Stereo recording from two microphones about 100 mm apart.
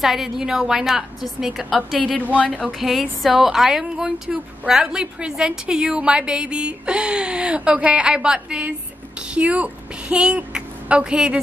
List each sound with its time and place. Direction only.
0.0 s a woman's voice: 5° right (ahead or behind)
2.3 s speech: 10° left (ahead or behind)
2.8 s a woman's voice: centre (ahead or behind)